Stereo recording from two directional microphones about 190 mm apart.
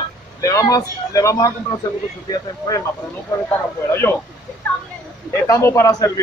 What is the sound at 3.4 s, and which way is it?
Speech, 10° left (ahead or behind).